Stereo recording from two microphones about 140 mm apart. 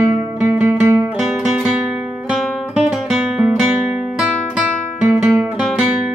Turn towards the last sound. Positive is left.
turn(degrees=-5)  # may be behind; listen again after turning